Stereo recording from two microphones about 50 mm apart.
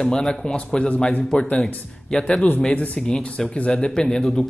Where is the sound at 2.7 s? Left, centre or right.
Left.